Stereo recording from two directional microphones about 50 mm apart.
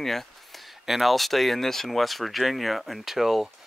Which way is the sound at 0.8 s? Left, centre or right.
Centre.